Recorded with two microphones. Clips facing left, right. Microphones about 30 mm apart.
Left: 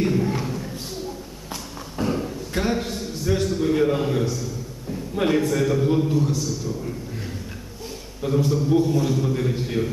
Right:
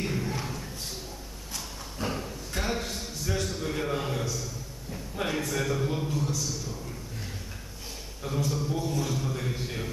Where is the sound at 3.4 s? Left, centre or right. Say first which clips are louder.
Left 11 dB; centre.